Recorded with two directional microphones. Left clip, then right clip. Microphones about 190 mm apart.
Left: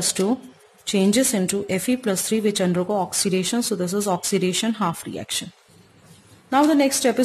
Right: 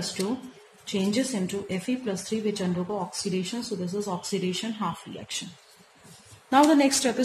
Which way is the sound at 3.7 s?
70° left (ahead or behind).